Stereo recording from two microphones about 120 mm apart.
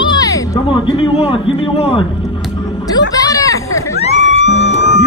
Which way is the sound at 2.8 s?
30° left (ahead or behind).